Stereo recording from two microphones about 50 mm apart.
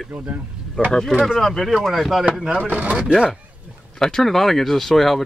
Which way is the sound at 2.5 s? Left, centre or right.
Right.